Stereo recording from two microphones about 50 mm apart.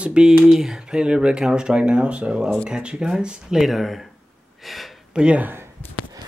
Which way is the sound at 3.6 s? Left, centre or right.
Centre.